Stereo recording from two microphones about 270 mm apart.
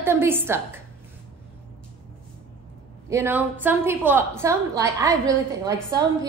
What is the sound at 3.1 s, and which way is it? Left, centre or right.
A woman's voice, centre.